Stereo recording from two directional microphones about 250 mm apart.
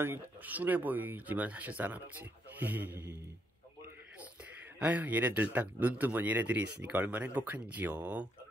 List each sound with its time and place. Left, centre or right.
0.4 s speech: centre
4.7 s speech: centre